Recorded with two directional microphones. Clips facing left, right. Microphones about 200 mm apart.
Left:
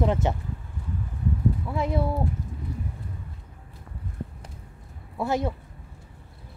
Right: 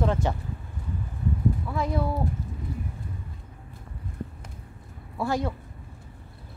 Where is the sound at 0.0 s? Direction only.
20° left (ahead or behind).